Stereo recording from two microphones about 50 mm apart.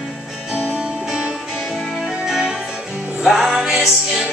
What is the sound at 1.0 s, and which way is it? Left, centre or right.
Music, centre.